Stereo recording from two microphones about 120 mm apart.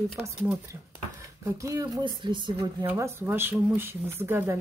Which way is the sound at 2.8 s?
20° right (ahead or behind).